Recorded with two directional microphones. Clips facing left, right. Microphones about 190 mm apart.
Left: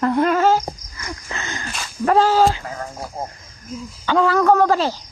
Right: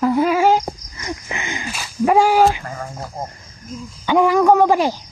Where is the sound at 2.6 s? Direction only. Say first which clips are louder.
Even; centre (ahead or behind).